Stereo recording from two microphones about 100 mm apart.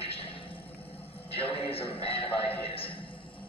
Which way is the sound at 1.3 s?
65° left (ahead or behind).